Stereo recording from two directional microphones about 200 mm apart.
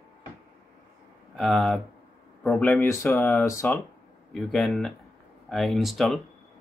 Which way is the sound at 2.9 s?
15° left (ahead or behind).